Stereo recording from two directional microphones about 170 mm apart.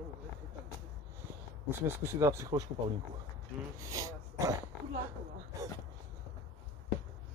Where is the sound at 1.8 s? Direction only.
15° right (ahead or behind).